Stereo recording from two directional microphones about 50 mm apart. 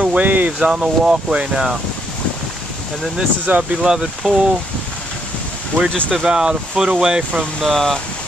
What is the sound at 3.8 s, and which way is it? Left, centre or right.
Speech, centre.